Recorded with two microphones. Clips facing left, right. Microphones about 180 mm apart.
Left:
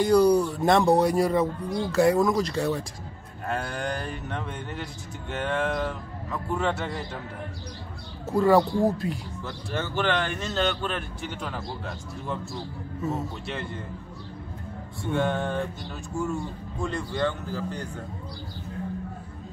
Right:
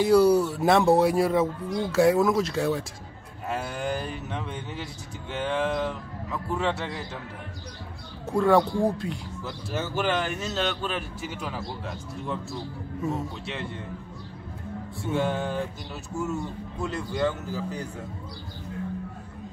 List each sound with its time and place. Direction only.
0.0 s speech: 5° right (ahead or behind)
8.3 s speech: centre (ahead or behind)
15.0 s speech: centre (ahead or behind)
16.8 s speech: 5° right (ahead or behind)